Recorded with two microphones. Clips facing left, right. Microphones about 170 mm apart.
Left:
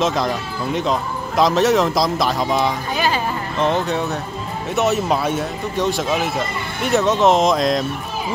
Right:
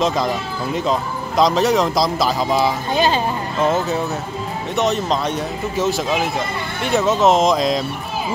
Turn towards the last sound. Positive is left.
turn(degrees=0)  # may be behind; listen again after turning